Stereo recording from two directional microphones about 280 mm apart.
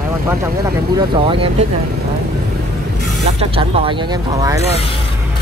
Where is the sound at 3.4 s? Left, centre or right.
Centre.